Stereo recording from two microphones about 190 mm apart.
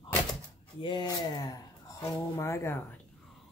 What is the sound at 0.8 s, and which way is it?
Speech, 25° left (ahead or behind).